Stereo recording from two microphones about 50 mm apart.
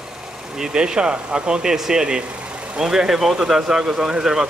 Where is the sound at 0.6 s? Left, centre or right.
Centre.